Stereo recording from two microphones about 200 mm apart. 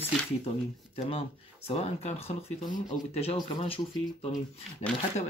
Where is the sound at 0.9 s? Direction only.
30° left (ahead or behind).